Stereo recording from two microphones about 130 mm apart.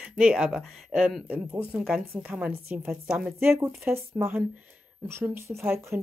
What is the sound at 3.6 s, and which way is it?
Speech, 15° right (ahead or behind).